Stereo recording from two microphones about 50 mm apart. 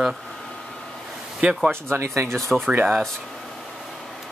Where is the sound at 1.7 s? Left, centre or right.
Right.